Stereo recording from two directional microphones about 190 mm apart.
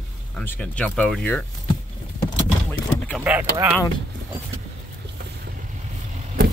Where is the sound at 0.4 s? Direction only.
5° left (ahead or behind).